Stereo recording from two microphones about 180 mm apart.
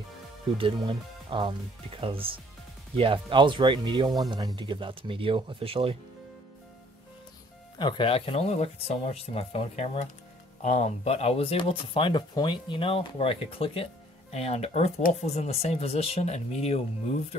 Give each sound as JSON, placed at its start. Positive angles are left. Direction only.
{"t": 0.6, "sound": "speech", "side_deg": -30}
{"t": 7.8, "sound": "speech", "side_deg": 30}